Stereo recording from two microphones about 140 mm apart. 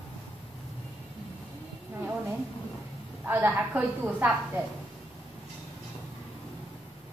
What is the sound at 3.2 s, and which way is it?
A woman's voice, 15° right (ahead or behind).